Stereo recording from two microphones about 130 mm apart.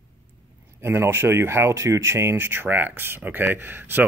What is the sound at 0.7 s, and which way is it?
Speech, 20° right (ahead or behind).